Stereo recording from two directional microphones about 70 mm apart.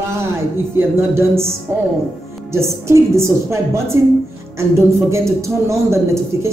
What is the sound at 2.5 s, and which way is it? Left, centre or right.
A woman's voice, right.